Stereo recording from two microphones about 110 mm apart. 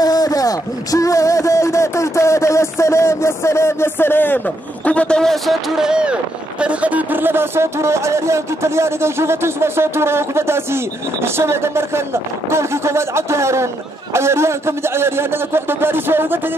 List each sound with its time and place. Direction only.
0.0 s a man's voice: 35° left (ahead or behind); by 16.5 s 20° right (ahead or behind)